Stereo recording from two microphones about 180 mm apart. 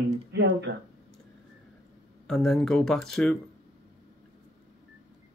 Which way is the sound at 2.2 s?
Centre (ahead or behind).